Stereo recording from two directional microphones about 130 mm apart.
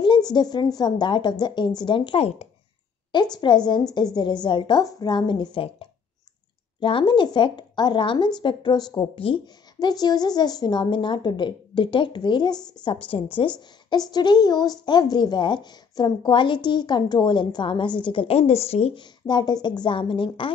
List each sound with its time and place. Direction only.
0.0 s a woman's voice: 35° left (ahead or behind)
3.1 s a woman's voice: 35° left (ahead or behind); by 18.9 s 50° left (ahead or behind)
18.9 s a woman's voice: 35° left (ahead or behind)